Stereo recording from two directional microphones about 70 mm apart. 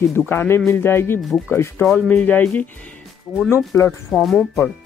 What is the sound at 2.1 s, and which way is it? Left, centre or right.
Speech, left.